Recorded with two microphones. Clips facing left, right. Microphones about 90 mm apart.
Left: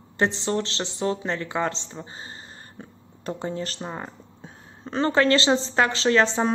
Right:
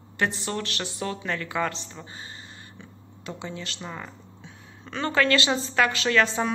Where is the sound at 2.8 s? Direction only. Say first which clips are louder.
Left 4 dB; 45° left (ahead or behind).